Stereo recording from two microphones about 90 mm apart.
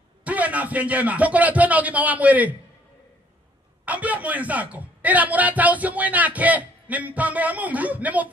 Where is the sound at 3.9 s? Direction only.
15° right (ahead or behind).